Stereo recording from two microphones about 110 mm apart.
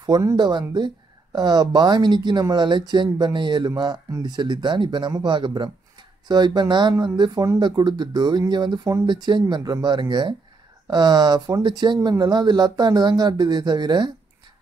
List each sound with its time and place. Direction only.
0.0 s speech: 35° right (ahead or behind)